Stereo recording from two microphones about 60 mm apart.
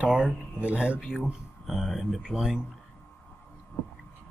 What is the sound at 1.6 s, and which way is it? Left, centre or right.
Speech, centre.